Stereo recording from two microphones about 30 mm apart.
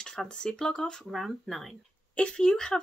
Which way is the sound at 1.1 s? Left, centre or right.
Centre.